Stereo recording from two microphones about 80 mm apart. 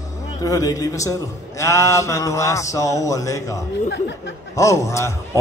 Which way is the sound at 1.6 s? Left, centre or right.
Left.